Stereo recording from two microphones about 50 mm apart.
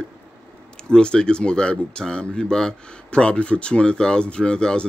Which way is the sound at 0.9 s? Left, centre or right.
Centre.